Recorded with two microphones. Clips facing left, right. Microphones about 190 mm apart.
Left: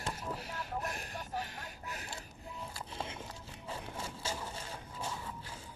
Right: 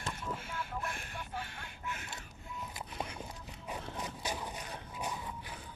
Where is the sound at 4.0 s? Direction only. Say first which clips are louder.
Right 1 dB; 15° right (ahead or behind).